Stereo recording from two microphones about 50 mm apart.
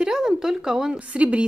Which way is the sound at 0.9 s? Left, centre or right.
Right.